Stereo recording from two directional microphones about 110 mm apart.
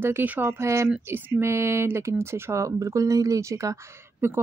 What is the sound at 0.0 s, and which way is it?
Speech, 20° right (ahead or behind).